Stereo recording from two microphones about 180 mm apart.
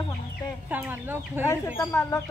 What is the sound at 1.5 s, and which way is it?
Speech, 15° left (ahead or behind).